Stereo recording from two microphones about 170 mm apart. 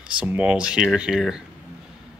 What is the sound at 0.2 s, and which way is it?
Speech, 5° right (ahead or behind).